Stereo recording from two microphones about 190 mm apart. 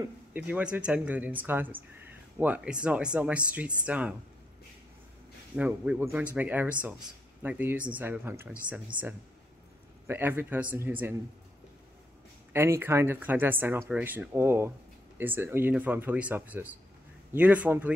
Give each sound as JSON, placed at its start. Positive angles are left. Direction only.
{"t": 0.0, "sound": "speech", "side_deg": -10}
{"t": 5.6, "sound": "speech", "side_deg": -10}
{"t": 10.0, "sound": "speech", "side_deg": -10}
{"t": 12.5, "sound": "speech", "side_deg": -15}